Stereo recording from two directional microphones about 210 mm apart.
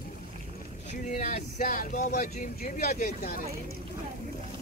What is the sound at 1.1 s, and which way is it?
Speech, 35° left (ahead or behind).